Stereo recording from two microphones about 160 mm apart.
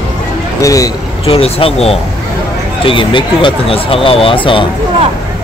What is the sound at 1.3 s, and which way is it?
Speech, 35° left (ahead or behind).